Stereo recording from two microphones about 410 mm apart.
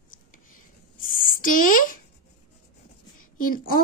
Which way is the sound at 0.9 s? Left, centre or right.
Left.